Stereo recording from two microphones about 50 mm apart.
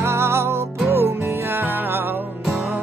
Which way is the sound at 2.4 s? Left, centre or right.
Centre.